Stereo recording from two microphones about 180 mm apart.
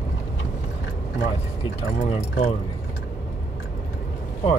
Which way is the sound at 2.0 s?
40° left (ahead or behind).